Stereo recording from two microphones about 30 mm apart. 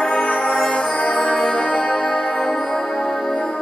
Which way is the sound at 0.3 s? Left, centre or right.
Left.